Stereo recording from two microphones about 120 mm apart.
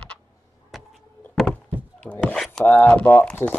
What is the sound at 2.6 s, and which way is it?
Speech, 10° left (ahead or behind).